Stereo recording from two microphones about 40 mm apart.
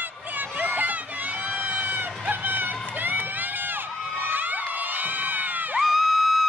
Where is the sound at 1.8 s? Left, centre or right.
Right.